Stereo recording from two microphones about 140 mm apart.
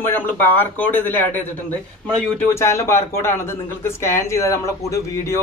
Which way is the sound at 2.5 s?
20° left (ahead or behind).